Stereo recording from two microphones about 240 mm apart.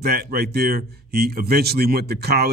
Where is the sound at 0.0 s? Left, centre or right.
Right.